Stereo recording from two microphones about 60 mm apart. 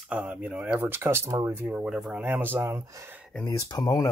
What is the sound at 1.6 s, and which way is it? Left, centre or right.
Speech, right.